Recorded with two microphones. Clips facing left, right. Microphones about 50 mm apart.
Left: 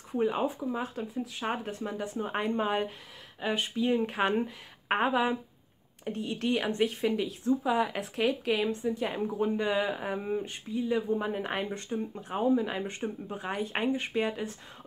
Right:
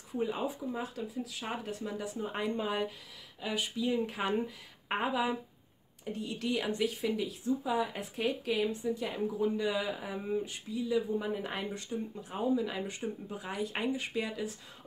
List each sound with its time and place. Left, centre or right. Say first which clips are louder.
0.1 s speech: left 5 dB; left